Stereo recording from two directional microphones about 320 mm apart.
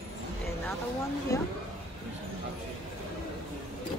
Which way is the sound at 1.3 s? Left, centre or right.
Centre.